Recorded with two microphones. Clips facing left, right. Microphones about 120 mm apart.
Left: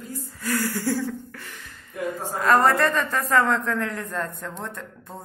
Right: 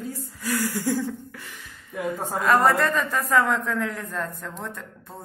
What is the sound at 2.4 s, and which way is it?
A man's voice, 5° right (ahead or behind).